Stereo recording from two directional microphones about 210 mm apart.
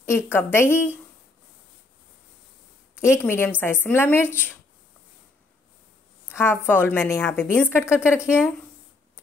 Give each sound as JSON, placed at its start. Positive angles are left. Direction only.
{"t": 0.3, "sound": "a woman's voice", "side_deg": 10}
{"t": 3.2, "sound": "a woman's voice", "side_deg": 10}
{"t": 6.2, "sound": "a woman's voice", "side_deg": 10}
{"t": 8.2, "sound": "speech", "side_deg": -5}